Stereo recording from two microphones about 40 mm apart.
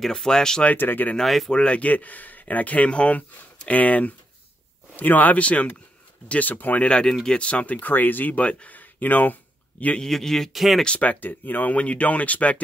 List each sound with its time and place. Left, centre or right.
0.0 s speech: centre
0.7 s speech: left
1.2 s speech: centre
1.5 s speech: left
1.8 s speech: left
6.8 s speech: left
7.8 s speech: left
8.4 s speech: left
8.7 s a sound: left
10.0 s speech: centre
10.5 s speech: centre
11.0 s speech: left
11.7 s speech: left